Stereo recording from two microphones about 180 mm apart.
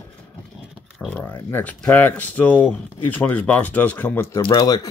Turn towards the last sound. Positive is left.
turn(degrees=20)  # may be behind; listen again after turning